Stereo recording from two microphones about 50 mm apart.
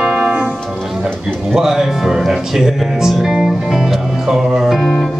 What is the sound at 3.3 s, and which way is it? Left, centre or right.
Music, centre.